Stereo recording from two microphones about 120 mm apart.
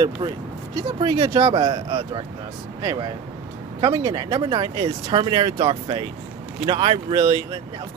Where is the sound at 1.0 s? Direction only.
40° right (ahead or behind).